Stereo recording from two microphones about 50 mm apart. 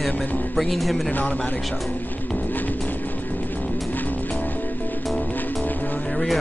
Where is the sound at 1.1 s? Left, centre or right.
Left.